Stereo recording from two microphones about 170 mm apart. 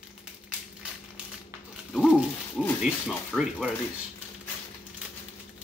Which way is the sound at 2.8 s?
5° right (ahead or behind).